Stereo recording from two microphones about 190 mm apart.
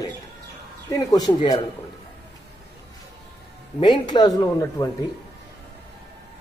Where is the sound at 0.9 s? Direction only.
20° left (ahead or behind).